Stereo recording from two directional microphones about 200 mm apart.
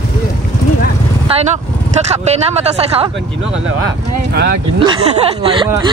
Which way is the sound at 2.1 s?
30° right (ahead or behind).